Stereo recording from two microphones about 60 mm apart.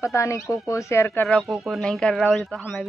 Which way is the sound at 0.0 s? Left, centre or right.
Left.